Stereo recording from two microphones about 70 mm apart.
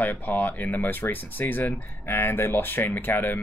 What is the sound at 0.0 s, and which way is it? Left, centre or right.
Speech, left.